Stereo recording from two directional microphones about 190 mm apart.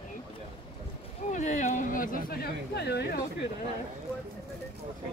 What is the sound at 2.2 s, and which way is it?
Speech, 55° left (ahead or behind).